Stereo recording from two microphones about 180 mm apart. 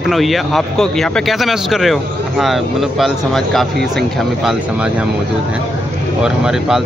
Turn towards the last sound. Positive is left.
turn(degrees=-5)  # may be behind; listen again after turning